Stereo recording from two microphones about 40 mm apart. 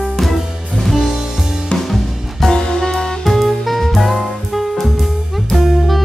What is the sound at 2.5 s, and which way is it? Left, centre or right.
Music, centre.